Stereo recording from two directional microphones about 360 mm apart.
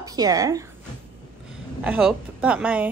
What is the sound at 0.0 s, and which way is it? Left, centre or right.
A woman's voice, centre.